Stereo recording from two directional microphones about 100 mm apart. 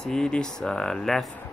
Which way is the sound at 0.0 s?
5° left (ahead or behind).